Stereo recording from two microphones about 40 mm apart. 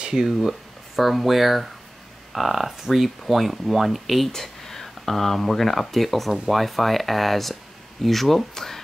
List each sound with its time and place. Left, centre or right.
0.1 s speech: centre